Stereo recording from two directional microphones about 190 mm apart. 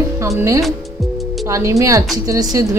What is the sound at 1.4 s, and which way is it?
A woman's voice, 15° right (ahead or behind).